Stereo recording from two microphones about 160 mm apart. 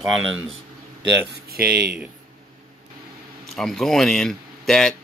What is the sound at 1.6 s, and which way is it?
Speech, 5° right (ahead or behind).